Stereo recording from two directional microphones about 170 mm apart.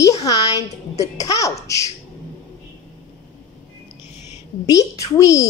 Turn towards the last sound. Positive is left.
turn(degrees=20)  # may be behind; listen again after turning